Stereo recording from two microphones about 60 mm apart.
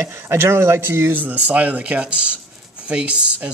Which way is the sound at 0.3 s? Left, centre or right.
Right.